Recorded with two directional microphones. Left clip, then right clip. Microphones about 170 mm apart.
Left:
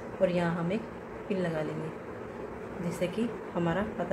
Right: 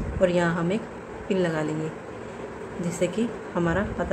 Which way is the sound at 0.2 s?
15° right (ahead or behind).